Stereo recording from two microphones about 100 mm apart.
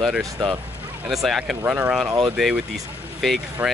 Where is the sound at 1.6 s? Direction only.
15° right (ahead or behind).